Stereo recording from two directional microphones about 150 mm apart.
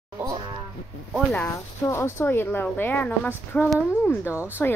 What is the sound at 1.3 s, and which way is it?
Speech, 15° left (ahead or behind).